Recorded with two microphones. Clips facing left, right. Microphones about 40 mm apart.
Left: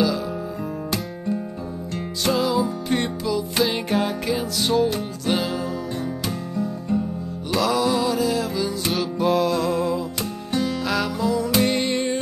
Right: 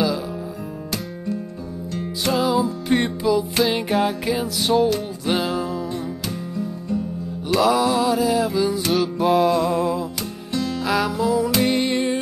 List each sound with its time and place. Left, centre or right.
2.2 s music: centre
7.5 s music: centre
9.3 s music: centre